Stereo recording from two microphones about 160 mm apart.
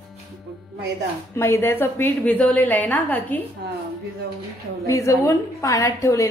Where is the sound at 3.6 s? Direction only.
90° right.